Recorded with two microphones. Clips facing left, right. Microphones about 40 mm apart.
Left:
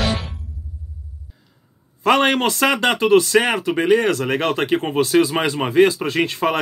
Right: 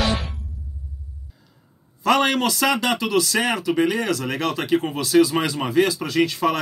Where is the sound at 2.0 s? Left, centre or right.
Left.